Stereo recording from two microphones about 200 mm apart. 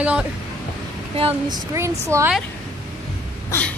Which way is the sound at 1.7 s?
15° right (ahead or behind).